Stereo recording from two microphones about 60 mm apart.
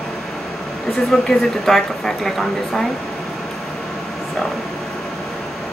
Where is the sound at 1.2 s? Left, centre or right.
Centre.